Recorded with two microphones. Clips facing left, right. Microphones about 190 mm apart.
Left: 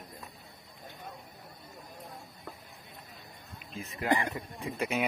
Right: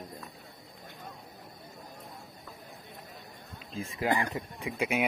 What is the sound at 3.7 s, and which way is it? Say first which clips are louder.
Speech: right 4 dB; 30° right (ahead or behind).